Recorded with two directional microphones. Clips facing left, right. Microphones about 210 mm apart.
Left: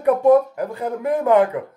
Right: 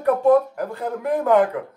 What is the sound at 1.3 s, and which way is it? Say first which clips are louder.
Speech: left 1 dB; centre (ahead or behind).